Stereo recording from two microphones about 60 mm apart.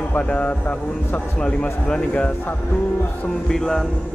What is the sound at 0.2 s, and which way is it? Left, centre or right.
Speech, left.